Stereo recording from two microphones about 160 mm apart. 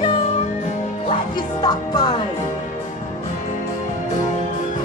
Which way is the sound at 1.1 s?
25° left (ahead or behind).